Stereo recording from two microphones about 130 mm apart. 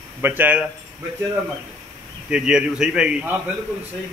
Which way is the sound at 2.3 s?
5° right (ahead or behind).